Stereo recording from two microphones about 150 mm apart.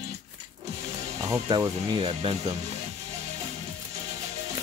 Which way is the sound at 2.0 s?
45° right (ahead or behind).